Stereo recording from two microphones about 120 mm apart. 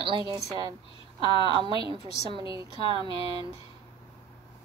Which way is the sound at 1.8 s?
40° right (ahead or behind).